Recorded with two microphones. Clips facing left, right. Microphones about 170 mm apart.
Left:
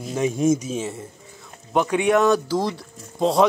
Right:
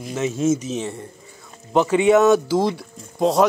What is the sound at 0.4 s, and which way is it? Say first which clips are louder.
Speech: right 1 dB; 10° left (ahead or behind).